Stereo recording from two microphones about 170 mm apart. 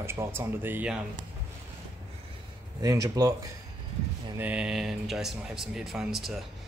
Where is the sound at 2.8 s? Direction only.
20° right (ahead or behind).